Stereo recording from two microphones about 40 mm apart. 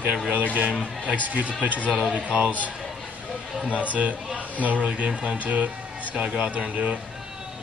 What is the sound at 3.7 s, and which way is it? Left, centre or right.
Speech, right.